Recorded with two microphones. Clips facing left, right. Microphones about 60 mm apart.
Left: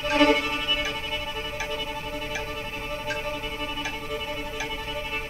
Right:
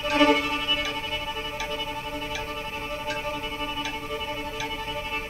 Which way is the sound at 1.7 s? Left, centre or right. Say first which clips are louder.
Even; centre.